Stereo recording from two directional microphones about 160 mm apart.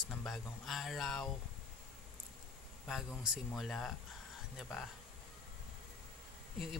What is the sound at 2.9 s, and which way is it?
Speech, 5° right (ahead or behind).